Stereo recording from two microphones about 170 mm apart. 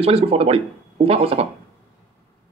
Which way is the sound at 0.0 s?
35° right (ahead or behind).